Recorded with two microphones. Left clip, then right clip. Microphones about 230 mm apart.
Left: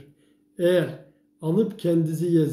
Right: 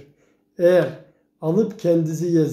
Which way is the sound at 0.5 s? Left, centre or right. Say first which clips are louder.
Right 5 dB; centre.